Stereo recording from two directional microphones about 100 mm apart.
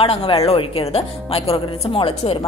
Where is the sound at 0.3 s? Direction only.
85° left.